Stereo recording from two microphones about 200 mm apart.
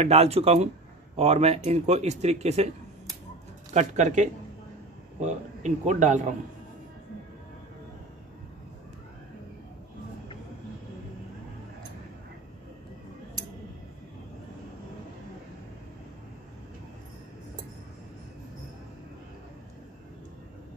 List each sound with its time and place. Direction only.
0.0 s speech: 30° right (ahead or behind)
3.7 s speech: 35° right (ahead or behind)